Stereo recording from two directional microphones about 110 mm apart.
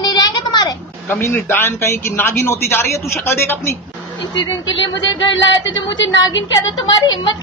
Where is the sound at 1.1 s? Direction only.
20° left (ahead or behind).